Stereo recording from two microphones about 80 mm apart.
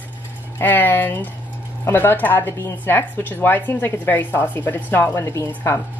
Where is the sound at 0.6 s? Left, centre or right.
Left.